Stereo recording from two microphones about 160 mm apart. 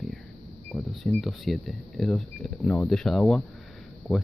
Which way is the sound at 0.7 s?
Centre (ahead or behind).